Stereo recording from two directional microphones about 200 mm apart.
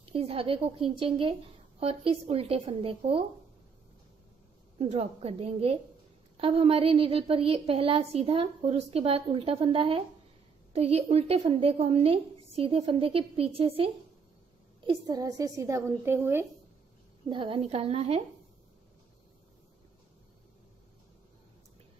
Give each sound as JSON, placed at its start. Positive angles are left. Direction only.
{"t": 0.0, "sound": "a woman's voice", "side_deg": -30}
{"t": 4.7, "sound": "a woman's voice", "side_deg": -30}
{"t": 17.3, "sound": "a woman's voice", "side_deg": -25}